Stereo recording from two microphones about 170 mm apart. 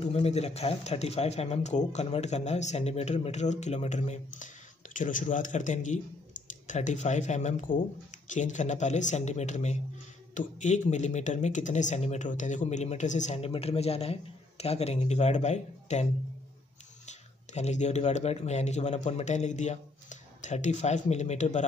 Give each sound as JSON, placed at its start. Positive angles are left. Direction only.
{"t": 0.0, "sound": "speech", "side_deg": 40}
{"t": 17.1, "sound": "speech", "side_deg": 40}